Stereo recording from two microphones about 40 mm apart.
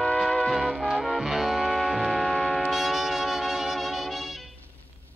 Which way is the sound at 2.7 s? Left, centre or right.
Centre.